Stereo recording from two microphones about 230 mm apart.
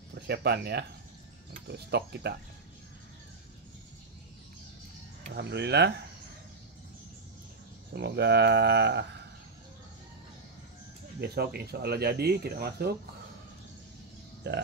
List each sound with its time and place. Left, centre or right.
0.1 s speech: right
5.3 s speech: right
7.9 s speech: right
11.1 s speech: right
14.4 s speech: right